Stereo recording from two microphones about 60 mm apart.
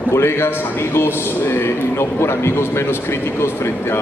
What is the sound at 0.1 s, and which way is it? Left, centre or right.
A man's voice, left.